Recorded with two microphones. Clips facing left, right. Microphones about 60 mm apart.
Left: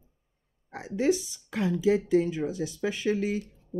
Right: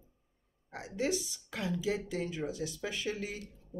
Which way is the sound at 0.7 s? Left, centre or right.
Left.